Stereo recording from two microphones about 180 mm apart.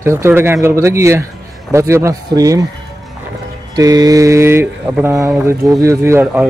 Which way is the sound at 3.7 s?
20° right (ahead or behind).